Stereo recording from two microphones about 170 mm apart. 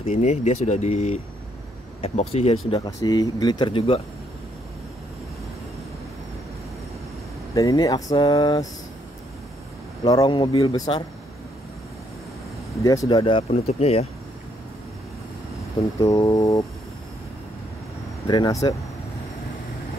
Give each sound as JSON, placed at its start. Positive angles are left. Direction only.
{"t": 0.1, "sound": "speech", "side_deg": 40}
{"t": 3.0, "sound": "speech", "side_deg": 25}
{"t": 7.5, "sound": "speech", "side_deg": 20}
{"t": 10.0, "sound": "speech", "side_deg": 25}
{"t": 12.8, "sound": "speech", "side_deg": 20}
{"t": 13.5, "sound": "speech", "side_deg": 40}
{"t": 16.0, "sound": "speech", "side_deg": 20}
{"t": 18.2, "sound": "speech", "side_deg": 25}